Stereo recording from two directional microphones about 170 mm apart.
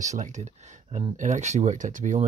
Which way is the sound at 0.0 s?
45° right (ahead or behind).